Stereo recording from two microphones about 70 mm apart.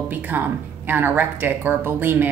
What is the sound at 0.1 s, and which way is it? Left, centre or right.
Speech, right.